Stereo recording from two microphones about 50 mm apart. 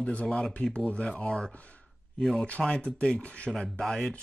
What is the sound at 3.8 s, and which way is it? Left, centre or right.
Speech, centre.